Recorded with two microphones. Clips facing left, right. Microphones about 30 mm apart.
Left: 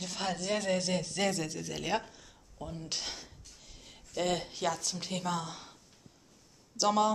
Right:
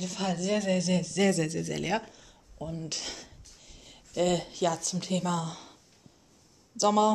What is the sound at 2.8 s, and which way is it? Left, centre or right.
Speech, centre.